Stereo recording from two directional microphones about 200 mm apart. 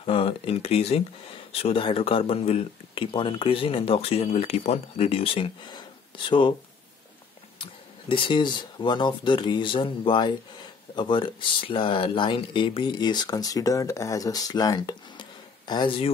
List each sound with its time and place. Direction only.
0.0 s speech: 30° left (ahead or behind)
8.1 s speech: 25° left (ahead or behind)